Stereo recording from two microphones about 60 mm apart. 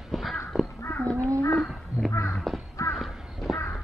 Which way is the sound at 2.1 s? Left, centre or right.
Left.